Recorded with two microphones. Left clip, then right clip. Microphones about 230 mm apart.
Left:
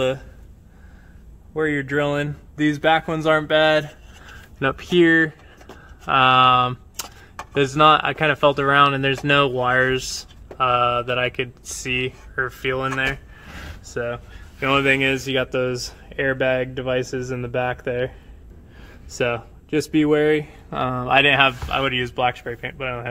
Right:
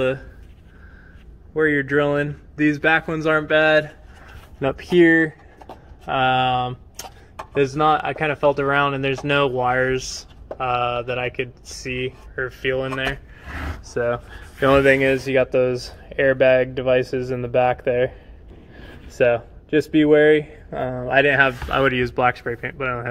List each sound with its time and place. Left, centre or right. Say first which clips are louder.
1.5 s speech: right 3 dB; centre
13.9 s speech: right 4 dB; centre
15.2 s speech: right 4 dB; centre
20.7 s speech: left 1 dB; left
21.6 s speech: right 3 dB; centre
21.9 s speech: right 2 dB; centre